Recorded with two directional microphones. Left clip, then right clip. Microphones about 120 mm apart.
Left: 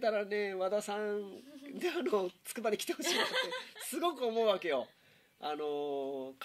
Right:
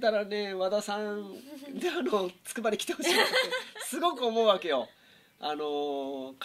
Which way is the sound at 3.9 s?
35° left (ahead or behind).